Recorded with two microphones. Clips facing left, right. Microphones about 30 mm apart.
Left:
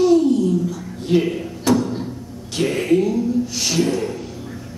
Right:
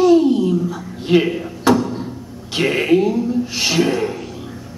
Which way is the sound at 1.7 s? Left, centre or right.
Right.